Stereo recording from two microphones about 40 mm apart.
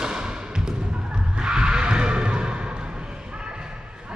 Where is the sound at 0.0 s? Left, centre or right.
Centre.